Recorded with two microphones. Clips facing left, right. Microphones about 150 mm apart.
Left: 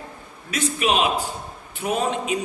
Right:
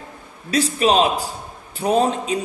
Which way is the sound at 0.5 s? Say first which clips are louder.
Right 5 dB; 35° right (ahead or behind).